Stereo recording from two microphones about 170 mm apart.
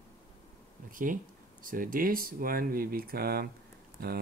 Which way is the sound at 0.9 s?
50° right (ahead or behind).